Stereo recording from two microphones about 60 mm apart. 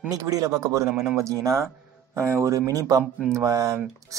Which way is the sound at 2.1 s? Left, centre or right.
Right.